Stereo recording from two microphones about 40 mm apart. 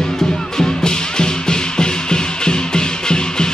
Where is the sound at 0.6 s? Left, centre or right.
Centre.